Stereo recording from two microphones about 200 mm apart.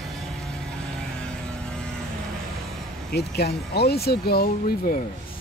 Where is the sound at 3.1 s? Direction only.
55° left (ahead or behind).